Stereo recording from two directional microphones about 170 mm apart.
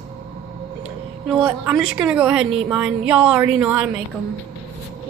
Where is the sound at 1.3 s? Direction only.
5° right (ahead or behind).